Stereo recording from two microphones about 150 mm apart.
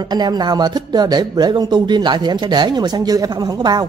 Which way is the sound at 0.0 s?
25° right (ahead or behind).